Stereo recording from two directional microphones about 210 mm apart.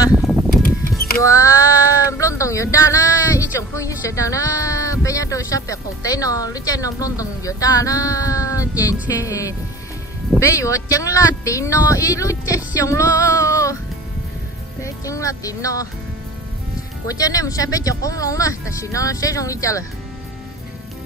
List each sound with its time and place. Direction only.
0.1 s a sound: centre (ahead or behind)
0.6 s a sound: 45° left (ahead or behind)
1.2 s female singing: 15° left (ahead or behind)
3.5 s speech: 15° left (ahead or behind)
14.8 s speech: 15° left (ahead or behind)
17.1 s speech: 15° left (ahead or behind)